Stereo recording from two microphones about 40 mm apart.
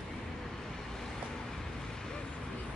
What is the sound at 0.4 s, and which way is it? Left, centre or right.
Vehicle, centre.